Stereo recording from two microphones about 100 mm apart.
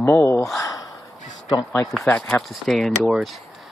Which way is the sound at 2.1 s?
10° left (ahead or behind).